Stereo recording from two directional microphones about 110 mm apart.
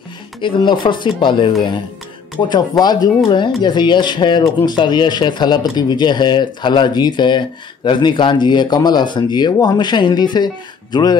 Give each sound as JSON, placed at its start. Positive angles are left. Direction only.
{"t": 0.4, "sound": "speech", "side_deg": 45}
{"t": 2.8, "sound": "speech", "side_deg": 40}